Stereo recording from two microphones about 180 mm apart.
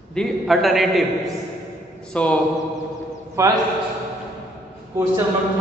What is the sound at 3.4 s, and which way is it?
Speech, 15° right (ahead or behind).